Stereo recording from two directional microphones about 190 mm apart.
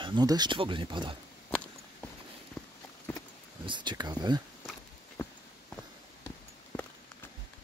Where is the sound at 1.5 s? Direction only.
5° left (ahead or behind).